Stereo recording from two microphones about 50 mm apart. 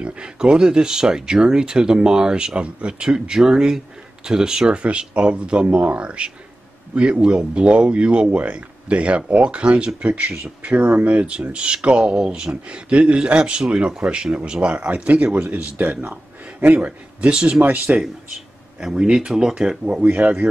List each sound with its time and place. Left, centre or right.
0.0 s speech: right
15.2 s speech: centre
15.5 s a man's voice: right
18.8 s speech: centre
20.2 s speech: right